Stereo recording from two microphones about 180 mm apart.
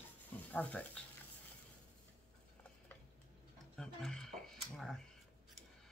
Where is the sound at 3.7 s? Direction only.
5° left (ahead or behind).